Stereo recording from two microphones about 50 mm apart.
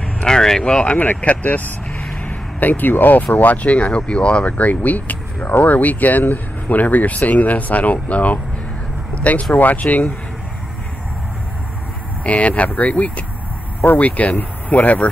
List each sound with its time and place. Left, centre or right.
0.2 s speech: centre
0.9 s speech: left
12.2 s speech: left